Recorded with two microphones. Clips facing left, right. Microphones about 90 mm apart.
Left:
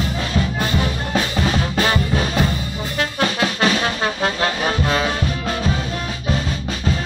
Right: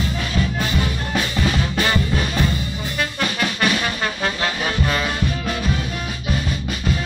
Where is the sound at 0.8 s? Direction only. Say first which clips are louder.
Left 2 dB; 25° left (ahead or behind).